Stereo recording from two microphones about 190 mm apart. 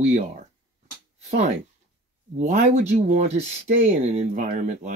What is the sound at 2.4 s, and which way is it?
Speech, 35° right (ahead or behind).